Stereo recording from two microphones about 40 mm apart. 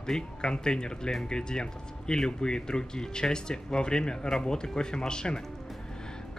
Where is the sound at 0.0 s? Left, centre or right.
Centre.